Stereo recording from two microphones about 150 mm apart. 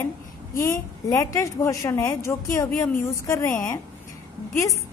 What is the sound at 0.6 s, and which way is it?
A woman's voice, 20° left (ahead or behind).